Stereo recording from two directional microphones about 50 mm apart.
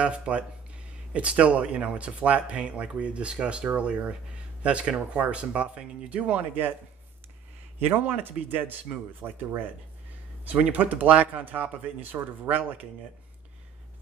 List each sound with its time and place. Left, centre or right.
0.0 s speech: right
7.8 s speech: right
10.4 s speech: right